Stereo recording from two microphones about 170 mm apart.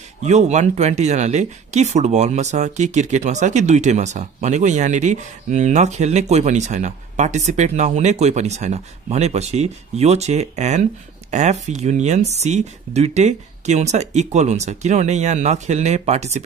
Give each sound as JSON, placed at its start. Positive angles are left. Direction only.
{"t": 0.2, "sound": "speech", "side_deg": -40}